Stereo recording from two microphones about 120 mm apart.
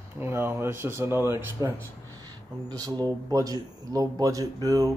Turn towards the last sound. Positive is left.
turn(degrees=-30)  # may be behind; listen again after turning